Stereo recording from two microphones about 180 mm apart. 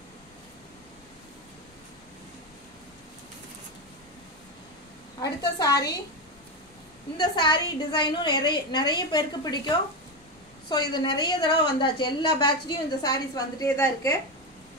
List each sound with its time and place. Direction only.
5.2 s a woman's voice: 20° left (ahead or behind)
7.2 s a woman's voice: 25° left (ahead or behind)